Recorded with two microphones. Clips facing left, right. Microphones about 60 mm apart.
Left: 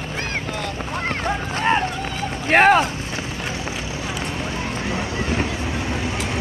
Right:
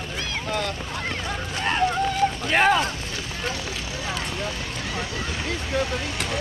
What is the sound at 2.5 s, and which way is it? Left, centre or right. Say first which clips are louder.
Speech: left 7 dB; left.